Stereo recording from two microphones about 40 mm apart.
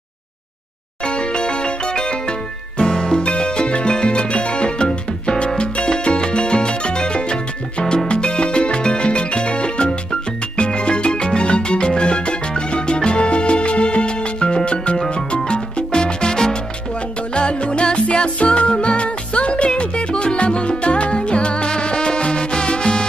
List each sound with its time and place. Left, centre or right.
1.0 s music: left
5.6 s salsa music: left
8.1 s music: left
17.3 s music: left